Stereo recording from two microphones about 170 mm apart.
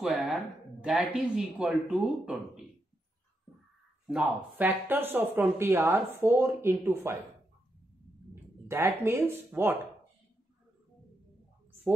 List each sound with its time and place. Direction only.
0.0 s speech: centre (ahead or behind)
4.1 s speech: 10° right (ahead or behind)
8.6 s speech: 15° right (ahead or behind)